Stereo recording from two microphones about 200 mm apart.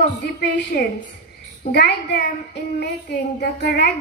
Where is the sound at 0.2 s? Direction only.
55° left (ahead or behind).